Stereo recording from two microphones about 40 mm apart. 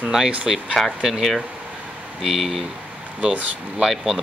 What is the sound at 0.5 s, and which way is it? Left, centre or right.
Speech, centre.